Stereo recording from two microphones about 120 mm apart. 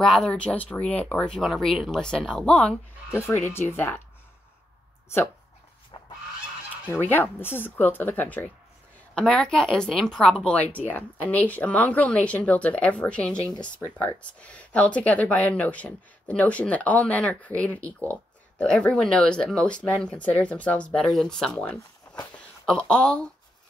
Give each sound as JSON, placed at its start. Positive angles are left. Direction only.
{"t": 0.0, "sound": "speech", "side_deg": 5}
{"t": 3.1, "sound": "speech", "side_deg": 20}
{"t": 6.9, "sound": "speech", "side_deg": 15}